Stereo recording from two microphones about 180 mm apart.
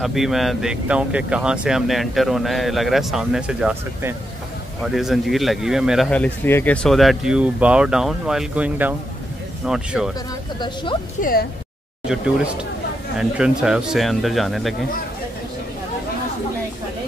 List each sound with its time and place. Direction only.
0.0 s speech: centre (ahead or behind)
10.6 s speech: 25° left (ahead or behind)
11.1 s speech: 50° left (ahead or behind)
12.1 s speech: 5° right (ahead or behind)